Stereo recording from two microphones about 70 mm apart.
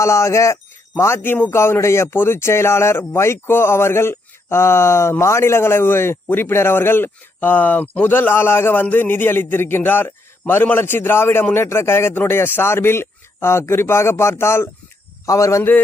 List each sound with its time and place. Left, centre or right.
0.0 s speech: left
15.2 s a man's voice: left